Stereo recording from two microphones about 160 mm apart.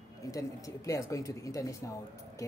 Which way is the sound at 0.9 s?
20° left (ahead or behind).